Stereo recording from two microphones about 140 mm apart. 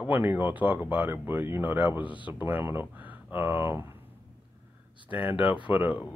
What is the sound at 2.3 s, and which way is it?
Speech, 15° right (ahead or behind).